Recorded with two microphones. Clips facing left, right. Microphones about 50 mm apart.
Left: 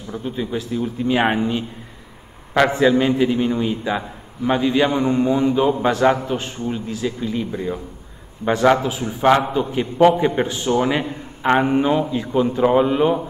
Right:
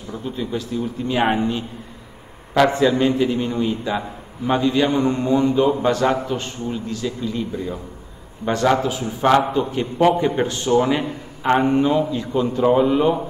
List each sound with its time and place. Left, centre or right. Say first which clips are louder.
0.4 s a man's voice: left 1 dB; centre
2.5 s a man's voice: even; centre
2.9 s a man's voice: left 1 dB; centre